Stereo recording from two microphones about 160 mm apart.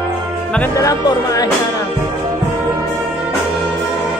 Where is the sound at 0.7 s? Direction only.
20° left (ahead or behind).